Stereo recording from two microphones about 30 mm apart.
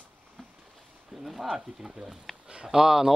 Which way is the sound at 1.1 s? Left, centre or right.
Centre.